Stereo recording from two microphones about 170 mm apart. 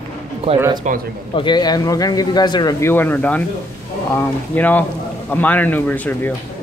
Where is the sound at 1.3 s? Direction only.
30° left (ahead or behind); by 6.3 s 10° left (ahead or behind).